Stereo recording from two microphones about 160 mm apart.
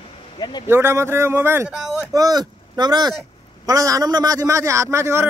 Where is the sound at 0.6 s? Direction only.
15° right (ahead or behind).